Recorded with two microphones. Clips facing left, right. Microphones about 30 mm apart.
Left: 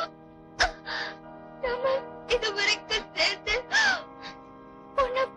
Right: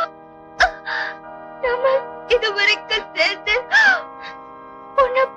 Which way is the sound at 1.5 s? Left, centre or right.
Right.